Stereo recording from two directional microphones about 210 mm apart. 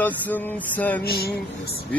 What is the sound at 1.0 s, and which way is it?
Music, 45° left (ahead or behind).